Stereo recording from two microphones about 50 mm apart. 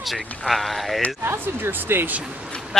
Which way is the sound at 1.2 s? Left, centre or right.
Right.